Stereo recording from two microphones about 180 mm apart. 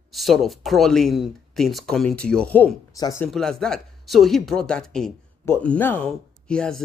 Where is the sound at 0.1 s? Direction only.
Centre (ahead or behind).